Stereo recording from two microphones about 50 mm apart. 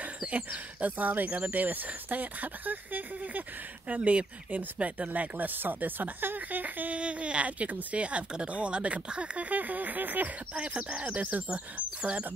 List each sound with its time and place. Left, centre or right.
0.2 s speech: right
3.9 s speech: right
5.6 s speech: right
7.0 s speech: right
10.5 s speech: right